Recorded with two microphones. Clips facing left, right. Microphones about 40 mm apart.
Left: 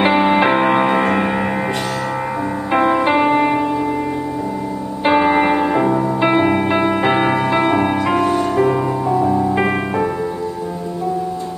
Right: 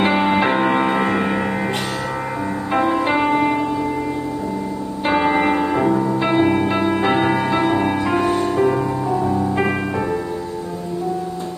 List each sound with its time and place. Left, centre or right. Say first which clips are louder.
0.0 s music: left 3 dB; centre
2.7 s music: left 3 dB; centre
5.0 s music: left 3 dB; centre
8.2 s music: left 2 dB; centre
8.5 s music: left 2 dB; centre